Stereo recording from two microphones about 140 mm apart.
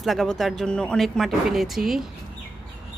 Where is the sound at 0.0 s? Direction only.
Centre (ahead or behind).